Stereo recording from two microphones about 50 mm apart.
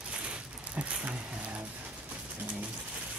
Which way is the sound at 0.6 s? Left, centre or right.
Right.